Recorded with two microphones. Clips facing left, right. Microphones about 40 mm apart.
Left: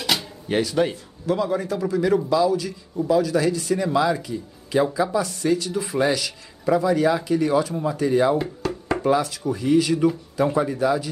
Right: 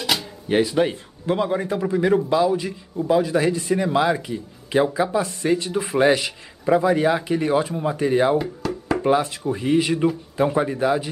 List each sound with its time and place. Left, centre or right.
0.0 s music: centre
0.6 s a man's voice: centre
1.2 s a man's voice: right
8.4 s a sound: centre
9.0 s a man's voice: right